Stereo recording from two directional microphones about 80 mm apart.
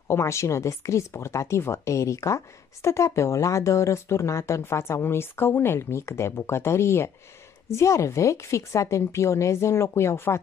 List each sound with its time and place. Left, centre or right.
0.1 s speech: left